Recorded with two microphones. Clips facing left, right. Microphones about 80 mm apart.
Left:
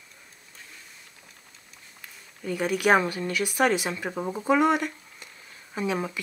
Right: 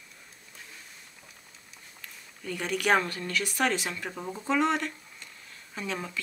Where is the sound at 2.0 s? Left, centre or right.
Centre.